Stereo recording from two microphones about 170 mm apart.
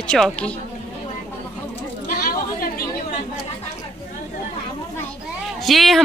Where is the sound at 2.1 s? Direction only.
60° left (ahead or behind).